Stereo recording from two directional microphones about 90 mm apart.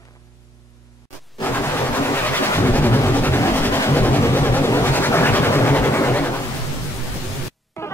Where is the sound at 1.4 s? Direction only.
25° left (ahead or behind).